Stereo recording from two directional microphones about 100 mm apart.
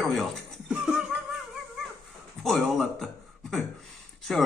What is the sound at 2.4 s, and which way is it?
Speech, centre (ahead or behind).